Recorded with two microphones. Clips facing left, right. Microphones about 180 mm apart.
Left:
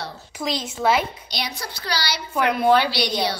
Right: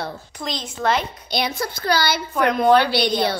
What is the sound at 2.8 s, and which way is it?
Speech, 55° right (ahead or behind).